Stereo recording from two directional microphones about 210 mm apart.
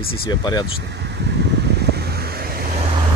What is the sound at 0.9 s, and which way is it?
Vehicle, 55° right (ahead or behind).